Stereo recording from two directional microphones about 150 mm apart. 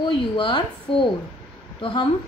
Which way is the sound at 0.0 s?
30° left (ahead or behind).